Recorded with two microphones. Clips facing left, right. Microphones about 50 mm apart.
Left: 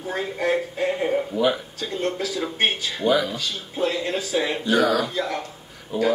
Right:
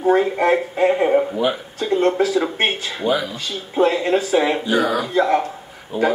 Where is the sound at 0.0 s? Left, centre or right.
Right.